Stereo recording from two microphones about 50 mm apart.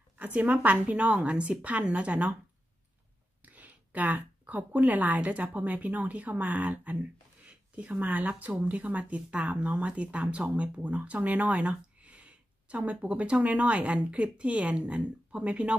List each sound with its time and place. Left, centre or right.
0.2 s speech: right
3.4 s speech: right